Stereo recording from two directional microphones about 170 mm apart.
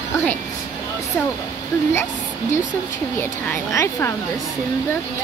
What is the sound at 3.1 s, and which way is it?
Speech, 15° left (ahead or behind).